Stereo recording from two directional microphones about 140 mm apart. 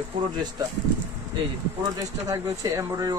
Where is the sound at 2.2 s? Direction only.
25° right (ahead or behind).